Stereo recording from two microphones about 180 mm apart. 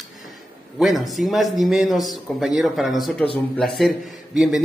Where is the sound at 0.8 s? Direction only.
Centre (ahead or behind).